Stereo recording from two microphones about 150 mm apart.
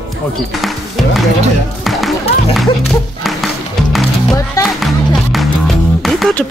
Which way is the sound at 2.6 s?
Centre (ahead or behind).